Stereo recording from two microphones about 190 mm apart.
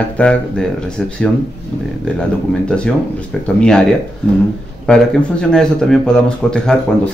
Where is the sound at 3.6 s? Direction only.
5° left (ahead or behind).